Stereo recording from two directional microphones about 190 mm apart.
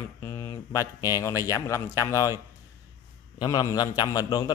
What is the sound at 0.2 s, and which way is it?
Speech, 15° left (ahead or behind).